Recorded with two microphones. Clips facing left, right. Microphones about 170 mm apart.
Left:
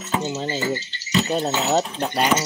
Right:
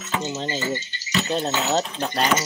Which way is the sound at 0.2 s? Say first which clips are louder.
Left 2 dB; 5° left (ahead or behind).